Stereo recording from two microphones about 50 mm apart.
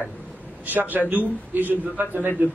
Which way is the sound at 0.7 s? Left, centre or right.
Right.